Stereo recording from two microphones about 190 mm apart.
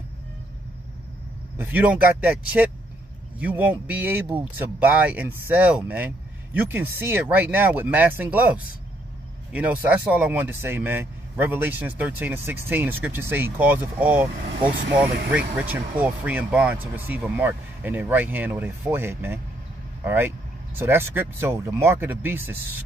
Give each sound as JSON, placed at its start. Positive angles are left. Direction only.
{"t": 1.6, "sound": "speech", "side_deg": -10}